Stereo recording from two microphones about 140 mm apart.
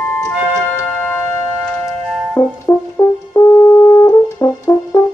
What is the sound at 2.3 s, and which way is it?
Music, 20° left (ahead or behind).